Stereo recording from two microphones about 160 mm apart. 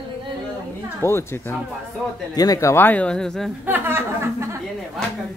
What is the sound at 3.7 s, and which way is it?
Speech, 15° right (ahead or behind).